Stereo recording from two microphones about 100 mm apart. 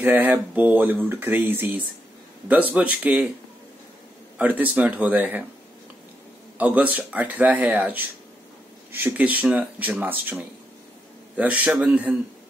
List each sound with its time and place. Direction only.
0.0 s speech: 20° right (ahead or behind)
4.4 s speech: 15° right (ahead or behind)
6.6 s speech: 15° right (ahead or behind)
11.3 s speech: 15° right (ahead or behind)